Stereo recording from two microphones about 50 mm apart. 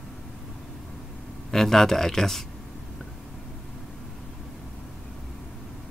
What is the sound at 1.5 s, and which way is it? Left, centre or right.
Speech, centre.